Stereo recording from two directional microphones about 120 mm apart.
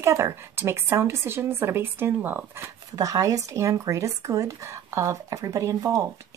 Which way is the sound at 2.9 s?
30° right (ahead or behind).